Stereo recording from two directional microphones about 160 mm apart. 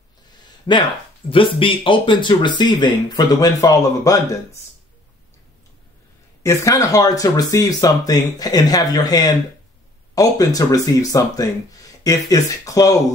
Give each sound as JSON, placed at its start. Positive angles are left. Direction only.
{"t": 0.7, "sound": "speech", "side_deg": 25}
{"t": 6.4, "sound": "speech", "side_deg": 20}